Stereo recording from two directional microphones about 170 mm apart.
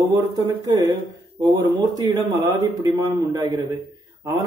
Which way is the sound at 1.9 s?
20° right (ahead or behind).